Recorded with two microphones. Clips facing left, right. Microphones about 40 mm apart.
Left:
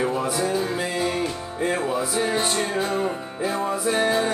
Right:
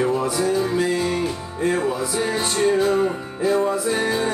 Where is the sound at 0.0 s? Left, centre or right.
Centre.